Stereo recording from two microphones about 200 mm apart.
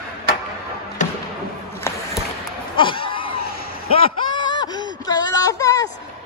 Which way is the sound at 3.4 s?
50° left (ahead or behind).